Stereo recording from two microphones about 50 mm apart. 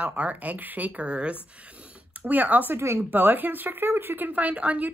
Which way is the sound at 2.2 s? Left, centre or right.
Right.